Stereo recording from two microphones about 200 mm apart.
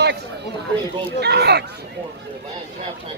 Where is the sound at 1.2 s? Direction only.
55° right (ahead or behind).